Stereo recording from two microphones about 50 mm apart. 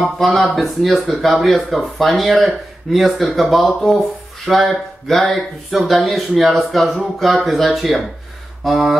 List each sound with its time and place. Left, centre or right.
0.3 s speech: centre
0.6 s speech: centre